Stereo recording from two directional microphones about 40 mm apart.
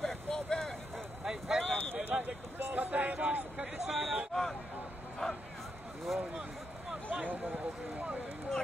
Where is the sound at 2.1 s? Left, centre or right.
Right.